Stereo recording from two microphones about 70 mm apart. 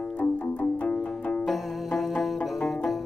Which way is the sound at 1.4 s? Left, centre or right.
Centre.